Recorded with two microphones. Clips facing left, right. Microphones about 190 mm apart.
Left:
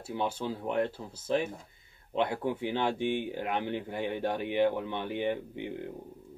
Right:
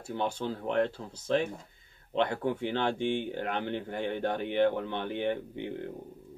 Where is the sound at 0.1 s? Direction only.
10° left (ahead or behind).